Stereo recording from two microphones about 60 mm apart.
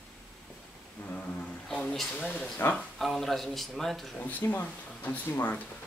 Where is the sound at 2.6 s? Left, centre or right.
Left.